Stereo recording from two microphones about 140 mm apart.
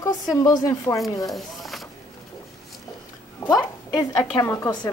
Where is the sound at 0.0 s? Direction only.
25° left (ahead or behind).